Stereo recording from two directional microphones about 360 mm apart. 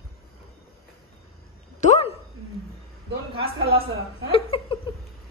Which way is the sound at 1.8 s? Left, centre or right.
Centre.